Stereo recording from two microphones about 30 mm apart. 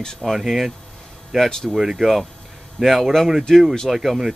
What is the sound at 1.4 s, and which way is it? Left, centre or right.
Speech, left.